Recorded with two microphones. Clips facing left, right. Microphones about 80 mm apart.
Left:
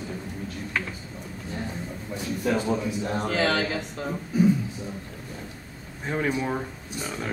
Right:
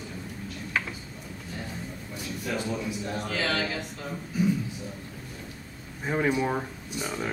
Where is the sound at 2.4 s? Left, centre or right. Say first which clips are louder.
Left 6 dB; left.